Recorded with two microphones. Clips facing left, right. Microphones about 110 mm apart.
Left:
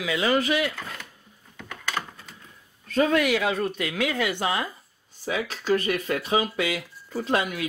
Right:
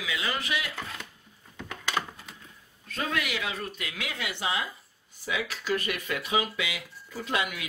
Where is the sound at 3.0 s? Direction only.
45° left (ahead or behind).